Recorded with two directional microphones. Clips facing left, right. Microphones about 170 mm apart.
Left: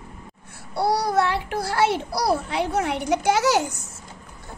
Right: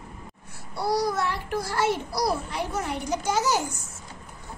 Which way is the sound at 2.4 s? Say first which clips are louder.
Left 6 dB; 70° left (ahead or behind).